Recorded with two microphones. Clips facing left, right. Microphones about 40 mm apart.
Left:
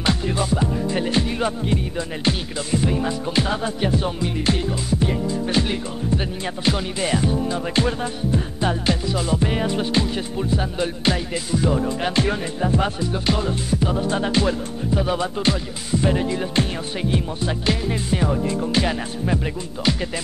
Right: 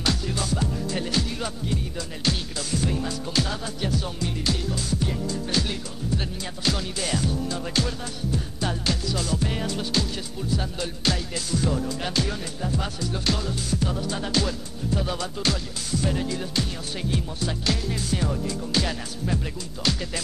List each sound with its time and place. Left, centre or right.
0.0 s music: left
11.8 s speech: left
13.1 s music: left